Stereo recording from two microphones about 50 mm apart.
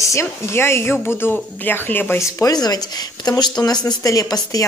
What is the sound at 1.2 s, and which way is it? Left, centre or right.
Speech, left.